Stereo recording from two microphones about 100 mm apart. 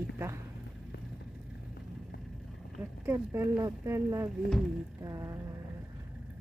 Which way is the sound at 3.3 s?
30° right (ahead or behind).